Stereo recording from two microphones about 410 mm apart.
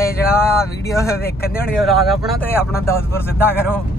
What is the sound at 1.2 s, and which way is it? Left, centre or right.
Speech, left.